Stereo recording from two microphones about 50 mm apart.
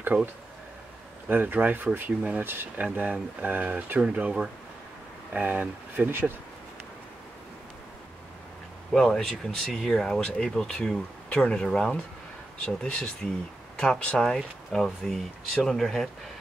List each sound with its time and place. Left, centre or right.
0.1 s speech: right
1.3 s speech: right
4.0 s speech: right
8.9 s speech: centre
14.2 s speech: centre